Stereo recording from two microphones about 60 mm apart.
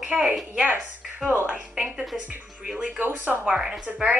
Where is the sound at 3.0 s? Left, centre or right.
Right.